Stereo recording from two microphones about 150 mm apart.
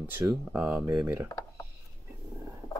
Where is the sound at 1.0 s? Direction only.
15° right (ahead or behind).